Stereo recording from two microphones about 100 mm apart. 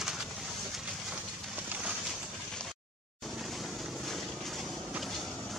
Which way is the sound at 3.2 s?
Centre (ahead or behind).